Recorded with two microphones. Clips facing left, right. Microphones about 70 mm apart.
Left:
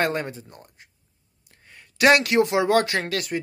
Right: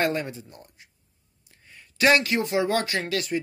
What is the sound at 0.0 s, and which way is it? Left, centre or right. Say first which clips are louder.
Speech: left 1 dB; left.